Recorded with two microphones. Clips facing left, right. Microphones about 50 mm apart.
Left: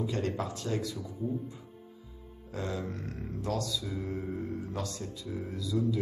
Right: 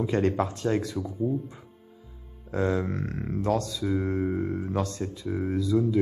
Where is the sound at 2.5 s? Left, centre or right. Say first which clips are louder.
Right 9 dB; right.